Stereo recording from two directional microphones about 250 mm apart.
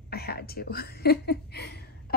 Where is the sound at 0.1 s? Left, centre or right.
Left.